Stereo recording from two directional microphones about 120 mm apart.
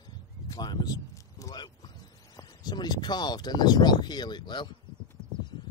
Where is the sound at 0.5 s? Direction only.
35° left (ahead or behind).